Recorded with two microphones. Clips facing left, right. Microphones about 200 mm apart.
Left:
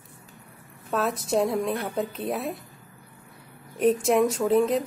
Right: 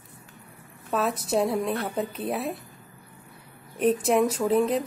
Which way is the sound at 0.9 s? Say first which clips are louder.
Even; centre (ahead or behind).